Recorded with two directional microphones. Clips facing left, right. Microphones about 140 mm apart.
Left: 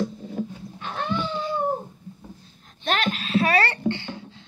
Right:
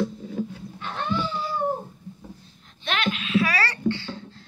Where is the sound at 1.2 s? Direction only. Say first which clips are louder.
Left 2 dB; 5° right (ahead or behind).